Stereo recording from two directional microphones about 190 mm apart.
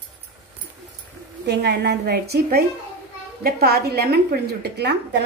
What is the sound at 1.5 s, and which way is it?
A woman's voice, 60° right (ahead or behind).